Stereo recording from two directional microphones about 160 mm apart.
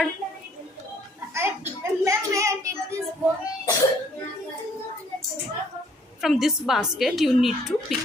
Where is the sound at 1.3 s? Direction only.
15° right (ahead or behind).